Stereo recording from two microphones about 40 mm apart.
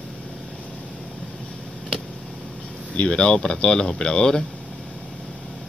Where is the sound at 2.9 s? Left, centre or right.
Left.